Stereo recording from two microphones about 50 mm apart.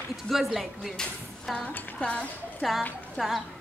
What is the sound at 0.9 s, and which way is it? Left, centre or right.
Speech, centre.